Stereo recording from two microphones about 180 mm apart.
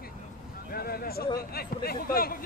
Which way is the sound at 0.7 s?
55° left (ahead or behind).